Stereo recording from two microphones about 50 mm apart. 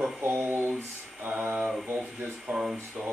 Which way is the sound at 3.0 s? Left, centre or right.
Centre.